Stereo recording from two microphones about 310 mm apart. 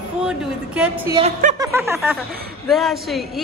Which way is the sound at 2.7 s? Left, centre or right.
Centre.